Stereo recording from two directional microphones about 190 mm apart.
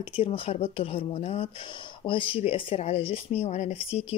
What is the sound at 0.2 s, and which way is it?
A woman's voice, 30° left (ahead or behind).